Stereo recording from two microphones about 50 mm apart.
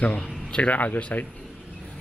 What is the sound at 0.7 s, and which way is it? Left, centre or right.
Speech, left.